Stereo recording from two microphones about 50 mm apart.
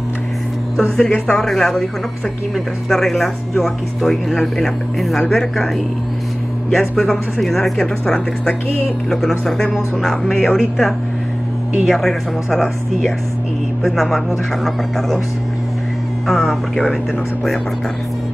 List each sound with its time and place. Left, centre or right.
0.7 s speech: centre
6.7 s speech: centre
7.8 s speech: centre
9.1 s speech: centre
11.8 s speech: centre
16.3 s speech: centre